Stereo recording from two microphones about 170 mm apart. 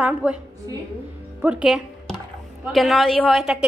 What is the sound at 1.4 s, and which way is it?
A woman's voice, 5° right (ahead or behind).